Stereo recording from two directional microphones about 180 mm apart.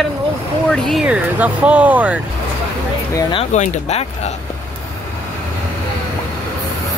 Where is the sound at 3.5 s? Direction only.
40° left (ahead or behind).